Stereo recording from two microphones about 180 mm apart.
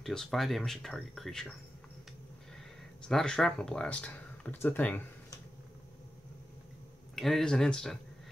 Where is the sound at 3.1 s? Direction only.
5° left (ahead or behind).